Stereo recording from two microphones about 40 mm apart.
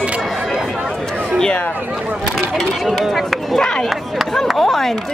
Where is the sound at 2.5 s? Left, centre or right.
Centre.